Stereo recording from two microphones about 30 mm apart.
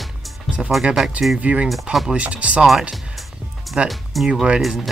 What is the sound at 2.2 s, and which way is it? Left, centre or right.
Speech, right.